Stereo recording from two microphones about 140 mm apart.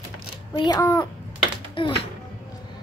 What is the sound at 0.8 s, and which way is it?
Speech, 20° left (ahead or behind).